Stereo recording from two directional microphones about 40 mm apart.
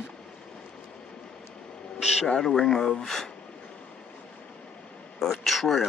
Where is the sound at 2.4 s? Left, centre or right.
Centre.